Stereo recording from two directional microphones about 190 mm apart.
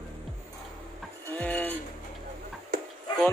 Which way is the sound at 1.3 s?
10° left (ahead or behind).